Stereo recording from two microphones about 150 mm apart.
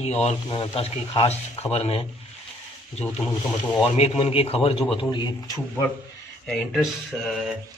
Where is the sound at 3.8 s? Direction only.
40° left (ahead or behind).